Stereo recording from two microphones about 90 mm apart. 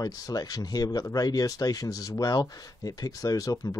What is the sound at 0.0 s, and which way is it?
Speech, 45° left (ahead or behind).